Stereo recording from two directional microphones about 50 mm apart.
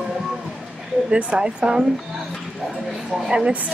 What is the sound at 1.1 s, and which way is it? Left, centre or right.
Speech, right.